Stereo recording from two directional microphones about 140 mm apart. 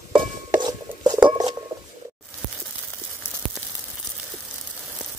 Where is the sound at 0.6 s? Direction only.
30° right (ahead or behind).